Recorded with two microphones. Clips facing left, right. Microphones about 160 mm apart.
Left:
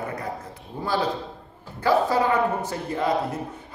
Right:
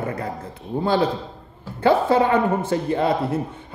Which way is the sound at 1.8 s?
25° right (ahead or behind).